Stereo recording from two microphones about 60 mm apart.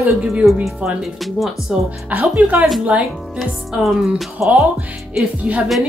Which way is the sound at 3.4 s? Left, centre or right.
Centre.